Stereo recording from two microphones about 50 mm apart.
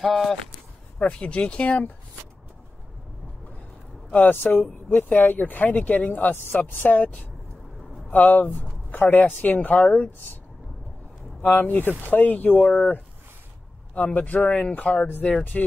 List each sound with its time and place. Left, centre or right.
0.0 s speech: centre
0.9 s speech: left
4.3 s speech: left
8.1 s speech: left
11.4 s speech: left